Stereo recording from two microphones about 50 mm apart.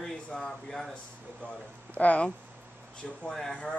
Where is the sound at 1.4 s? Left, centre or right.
Left.